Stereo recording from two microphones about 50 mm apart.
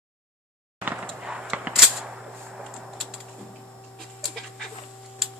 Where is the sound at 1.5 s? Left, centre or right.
Right.